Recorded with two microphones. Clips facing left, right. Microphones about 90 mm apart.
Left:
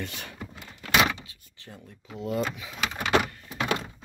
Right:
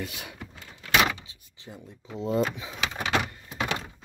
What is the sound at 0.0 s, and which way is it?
Speech, 10° right (ahead or behind).